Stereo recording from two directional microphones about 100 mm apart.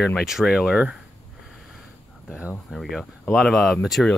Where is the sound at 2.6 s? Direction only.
Centre (ahead or behind).